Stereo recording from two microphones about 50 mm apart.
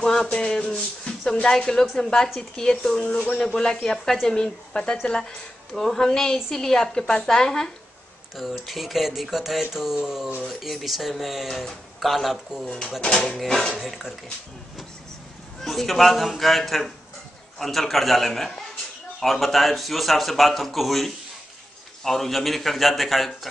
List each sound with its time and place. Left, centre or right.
0.0 s a woman's voice: centre
8.4 s speech: centre
13.0 s a woman's voice: centre
15.6 s speech: centre